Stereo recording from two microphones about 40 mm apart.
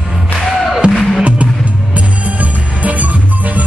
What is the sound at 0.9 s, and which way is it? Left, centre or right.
Music, centre.